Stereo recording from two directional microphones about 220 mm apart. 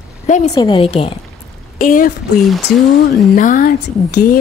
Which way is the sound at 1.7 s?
40° left (ahead or behind).